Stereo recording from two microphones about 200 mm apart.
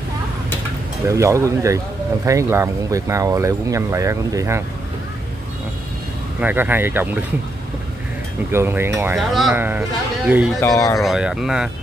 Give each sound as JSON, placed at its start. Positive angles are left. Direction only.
{"t": 1.0, "sound": "speech", "side_deg": -15}
{"t": 6.4, "sound": "speech", "side_deg": -10}
{"t": 8.5, "sound": "speech", "side_deg": -10}
{"t": 10.6, "sound": "speech", "side_deg": 15}
{"t": 11.0, "sound": "speech", "side_deg": 0}